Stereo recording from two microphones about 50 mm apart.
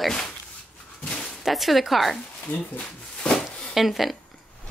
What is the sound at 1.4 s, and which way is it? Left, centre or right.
Speech, centre.